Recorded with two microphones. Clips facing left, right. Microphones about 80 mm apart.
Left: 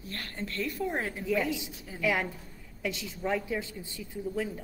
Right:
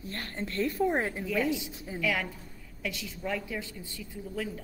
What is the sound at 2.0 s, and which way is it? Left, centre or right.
A woman's voice, left.